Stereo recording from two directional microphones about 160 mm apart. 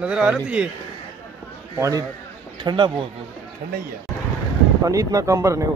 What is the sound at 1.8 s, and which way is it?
Speech, 20° right (ahead or behind).